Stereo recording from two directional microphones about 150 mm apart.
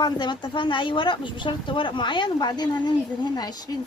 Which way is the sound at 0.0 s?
30° left (ahead or behind).